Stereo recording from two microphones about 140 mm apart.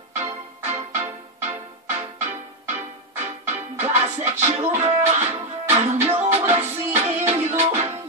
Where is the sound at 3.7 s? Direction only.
55° right (ahead or behind).